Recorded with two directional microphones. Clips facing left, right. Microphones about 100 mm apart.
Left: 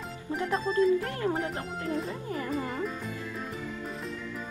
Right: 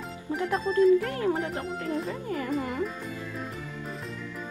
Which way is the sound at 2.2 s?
20° left (ahead or behind).